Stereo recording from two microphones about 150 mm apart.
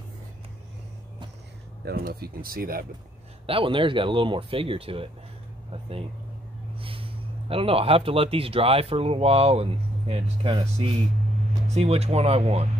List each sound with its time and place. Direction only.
1.9 s speech: 90° right
3.4 s speech: 35° right (ahead or behind)
5.7 s a sound: 40° right (ahead or behind)
6.8 s speech: 35° right (ahead or behind)